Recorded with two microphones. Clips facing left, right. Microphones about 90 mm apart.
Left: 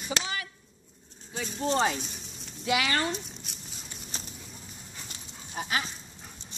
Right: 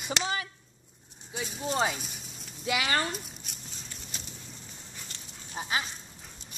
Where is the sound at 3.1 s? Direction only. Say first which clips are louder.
Left 2 dB; 5° right (ahead or behind).